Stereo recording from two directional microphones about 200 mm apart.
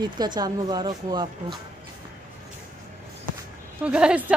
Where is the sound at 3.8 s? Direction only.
5° right (ahead or behind).